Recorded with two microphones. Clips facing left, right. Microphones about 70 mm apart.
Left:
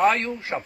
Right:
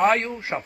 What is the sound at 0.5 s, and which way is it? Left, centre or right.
Speech, centre.